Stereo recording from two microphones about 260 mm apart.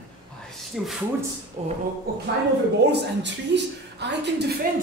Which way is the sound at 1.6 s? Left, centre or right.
Right.